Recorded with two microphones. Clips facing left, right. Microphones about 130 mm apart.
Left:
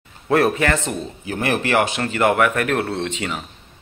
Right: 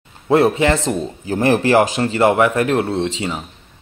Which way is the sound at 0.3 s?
25° right (ahead or behind).